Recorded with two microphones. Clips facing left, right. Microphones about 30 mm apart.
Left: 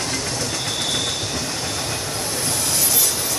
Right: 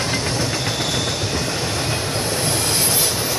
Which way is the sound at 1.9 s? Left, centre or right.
Right.